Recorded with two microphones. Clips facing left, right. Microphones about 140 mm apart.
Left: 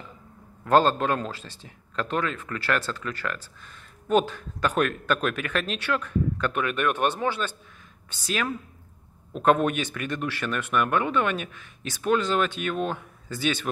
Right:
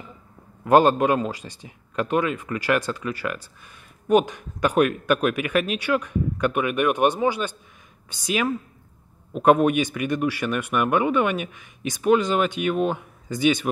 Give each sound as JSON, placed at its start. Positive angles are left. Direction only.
{"t": 0.7, "sound": "a man's voice", "side_deg": -15}